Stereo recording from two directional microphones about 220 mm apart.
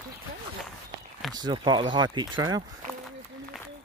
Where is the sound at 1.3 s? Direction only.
20° right (ahead or behind).